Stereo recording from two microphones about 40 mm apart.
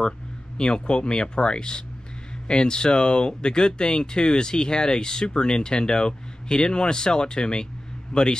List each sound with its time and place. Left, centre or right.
0.6 s a man's voice: left